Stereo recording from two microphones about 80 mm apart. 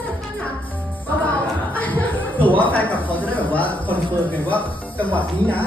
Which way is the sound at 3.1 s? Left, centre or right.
Left.